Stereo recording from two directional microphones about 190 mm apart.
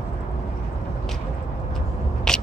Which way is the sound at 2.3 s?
5° left (ahead or behind).